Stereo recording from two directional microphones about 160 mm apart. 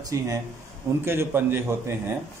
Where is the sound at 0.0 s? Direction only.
20° right (ahead or behind).